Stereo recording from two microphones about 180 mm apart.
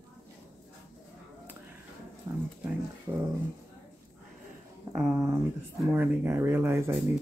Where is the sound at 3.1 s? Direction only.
20° right (ahead or behind).